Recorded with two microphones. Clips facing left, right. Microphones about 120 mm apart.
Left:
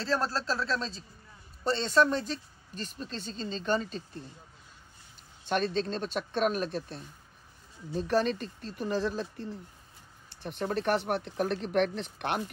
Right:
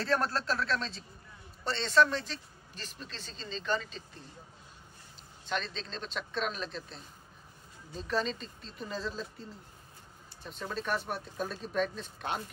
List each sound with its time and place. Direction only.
0.1 s speech: 30° left (ahead or behind)
5.5 s speech: 55° left (ahead or behind); by 12.4 s 70° left (ahead or behind)